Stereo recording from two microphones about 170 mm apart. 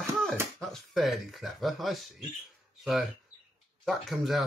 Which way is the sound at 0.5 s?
Centre (ahead or behind).